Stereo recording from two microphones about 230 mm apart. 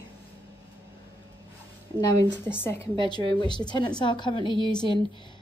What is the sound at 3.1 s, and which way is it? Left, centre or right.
A woman's voice, centre.